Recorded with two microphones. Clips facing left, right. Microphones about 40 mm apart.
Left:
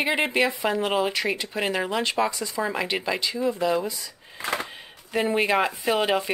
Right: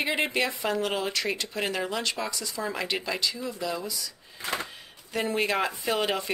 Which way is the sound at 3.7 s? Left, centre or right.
Left.